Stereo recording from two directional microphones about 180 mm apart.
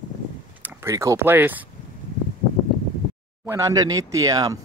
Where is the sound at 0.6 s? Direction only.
10° right (ahead or behind).